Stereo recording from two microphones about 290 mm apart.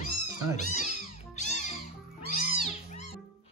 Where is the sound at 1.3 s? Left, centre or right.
Left.